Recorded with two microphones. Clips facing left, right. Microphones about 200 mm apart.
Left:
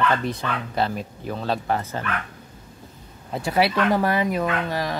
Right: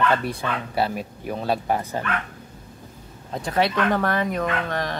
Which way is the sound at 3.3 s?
5° left (ahead or behind).